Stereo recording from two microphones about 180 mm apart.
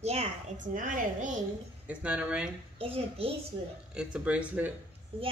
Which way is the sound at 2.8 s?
30° right (ahead or behind).